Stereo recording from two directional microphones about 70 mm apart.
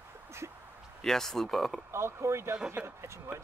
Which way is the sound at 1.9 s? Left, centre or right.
Right.